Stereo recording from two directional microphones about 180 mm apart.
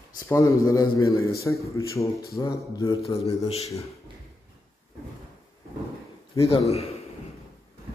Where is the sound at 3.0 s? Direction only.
35° left (ahead or behind).